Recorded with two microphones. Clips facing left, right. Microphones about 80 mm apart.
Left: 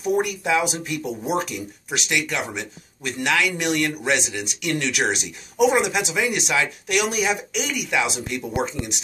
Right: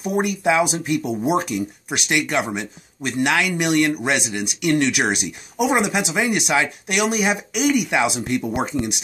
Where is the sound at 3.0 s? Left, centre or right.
Right.